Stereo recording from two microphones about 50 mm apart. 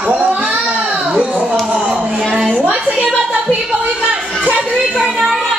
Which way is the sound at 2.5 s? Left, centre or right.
Right.